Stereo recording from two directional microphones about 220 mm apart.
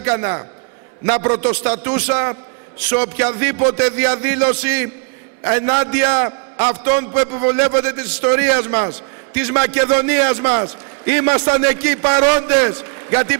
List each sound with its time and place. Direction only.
0.0 s a man's voice: 20° right (ahead or behind)